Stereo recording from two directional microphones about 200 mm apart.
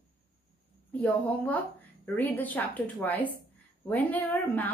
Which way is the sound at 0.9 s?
10° left (ahead or behind).